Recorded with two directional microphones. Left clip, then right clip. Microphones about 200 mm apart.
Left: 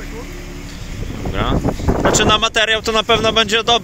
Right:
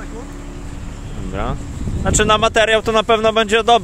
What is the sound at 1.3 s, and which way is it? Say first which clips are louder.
Speech: left 6 dB; centre (ahead or behind).